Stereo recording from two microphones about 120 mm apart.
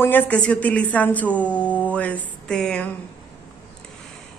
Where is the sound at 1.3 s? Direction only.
10° left (ahead or behind).